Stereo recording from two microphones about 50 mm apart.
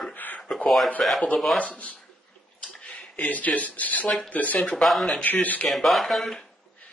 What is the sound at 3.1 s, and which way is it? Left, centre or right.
Speech, left.